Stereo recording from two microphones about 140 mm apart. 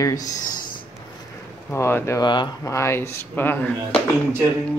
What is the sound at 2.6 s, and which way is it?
Speech, 20° left (ahead or behind).